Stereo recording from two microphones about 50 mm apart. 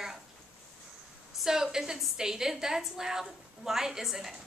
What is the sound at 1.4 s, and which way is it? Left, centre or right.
A woman's voice, centre.